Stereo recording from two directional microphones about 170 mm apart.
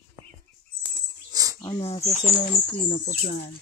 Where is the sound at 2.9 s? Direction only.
60° left (ahead or behind).